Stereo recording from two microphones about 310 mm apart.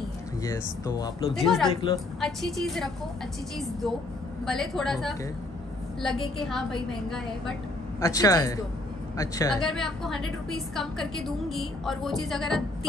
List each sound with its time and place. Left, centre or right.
0.4 s speech: centre
1.4 s a woman's voice: centre
1.7 s speech: centre
2.1 s a woman's voice: centre
4.5 s a woman's voice: centre